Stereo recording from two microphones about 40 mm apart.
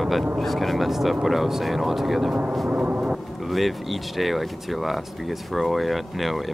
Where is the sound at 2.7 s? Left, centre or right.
Right.